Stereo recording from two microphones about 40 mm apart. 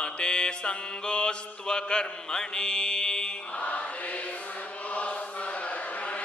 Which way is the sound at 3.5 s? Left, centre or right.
Left.